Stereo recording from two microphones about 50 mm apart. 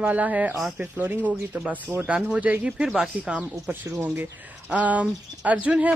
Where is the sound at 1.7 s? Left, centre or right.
Right.